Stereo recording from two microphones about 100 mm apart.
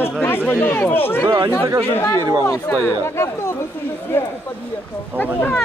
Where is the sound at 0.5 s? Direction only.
20° left (ahead or behind).